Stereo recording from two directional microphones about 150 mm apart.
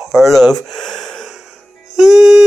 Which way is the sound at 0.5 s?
5° left (ahead or behind).